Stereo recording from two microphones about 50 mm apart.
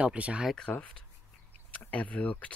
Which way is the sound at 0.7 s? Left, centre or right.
Left.